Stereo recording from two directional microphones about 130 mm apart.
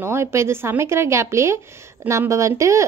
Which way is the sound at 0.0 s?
20° right (ahead or behind).